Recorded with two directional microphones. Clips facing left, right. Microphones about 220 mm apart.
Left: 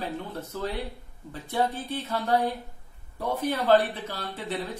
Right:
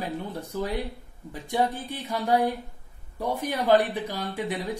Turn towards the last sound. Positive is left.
turn(degrees=-15)  # may be behind; listen again after turning